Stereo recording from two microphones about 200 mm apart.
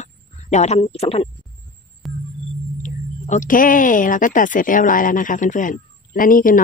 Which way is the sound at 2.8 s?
40° left (ahead or behind).